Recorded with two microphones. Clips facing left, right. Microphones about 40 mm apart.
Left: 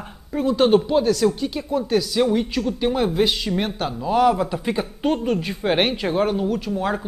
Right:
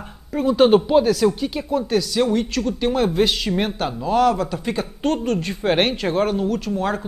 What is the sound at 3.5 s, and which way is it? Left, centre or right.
Speech, centre.